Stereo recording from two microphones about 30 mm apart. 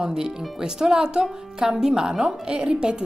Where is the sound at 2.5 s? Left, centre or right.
Right.